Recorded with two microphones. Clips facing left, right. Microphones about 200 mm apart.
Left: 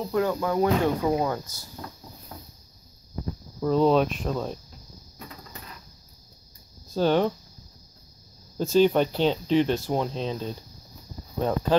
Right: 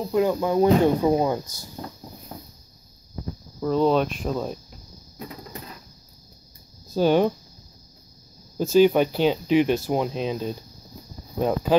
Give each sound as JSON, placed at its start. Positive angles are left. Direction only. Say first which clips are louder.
{"t": 0.0, "sound": "speech", "louder": "right 3 dB", "side_deg": -15}
{"t": 3.6, "sound": "speech", "louder": "even", "side_deg": 0}
{"t": 6.9, "sound": "speech", "louder": "right 3 dB", "side_deg": -10}
{"t": 8.5, "sound": "speech", "louder": "right 3 dB", "side_deg": -5}